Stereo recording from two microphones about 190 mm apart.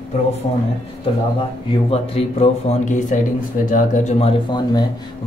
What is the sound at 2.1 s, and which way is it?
Speech, 35° left (ahead or behind).